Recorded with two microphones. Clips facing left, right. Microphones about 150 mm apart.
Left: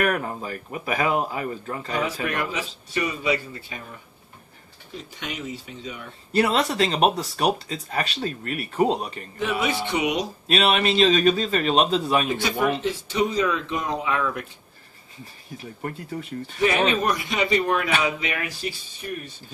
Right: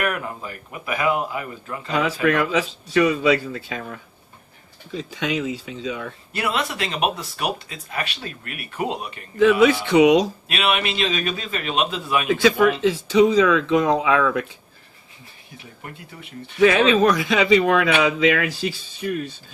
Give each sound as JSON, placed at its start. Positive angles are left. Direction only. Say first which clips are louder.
{"t": 0.0, "sound": "speech", "louder": "left 2 dB", "side_deg": 40}
{"t": 1.9, "sound": "a man's voice", "louder": "right 7 dB", "side_deg": -90}
{"t": 6.3, "sound": "speech", "louder": "left 5 dB", "side_deg": 35}
{"t": 9.4, "sound": "a man's voice", "louder": "right 10 dB", "side_deg": -90}
{"t": 10.5, "sound": "speech", "louder": "left 4 dB", "side_deg": 35}
{"t": 12.3, "sound": "a man's voice", "louder": "right 6 dB", "side_deg": -90}
{"t": 15.5, "sound": "speech", "louder": "left 7 dB", "side_deg": 40}
{"t": 16.5, "sound": "a man's voice", "louder": "right 6 dB", "side_deg": -90}